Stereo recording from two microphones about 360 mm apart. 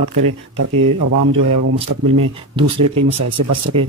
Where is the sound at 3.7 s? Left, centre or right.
Centre.